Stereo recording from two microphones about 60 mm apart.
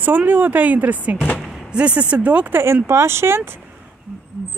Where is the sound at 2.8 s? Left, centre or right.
Right.